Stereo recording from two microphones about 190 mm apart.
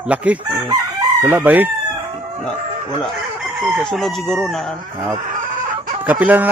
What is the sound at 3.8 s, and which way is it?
Speech, centre (ahead or behind).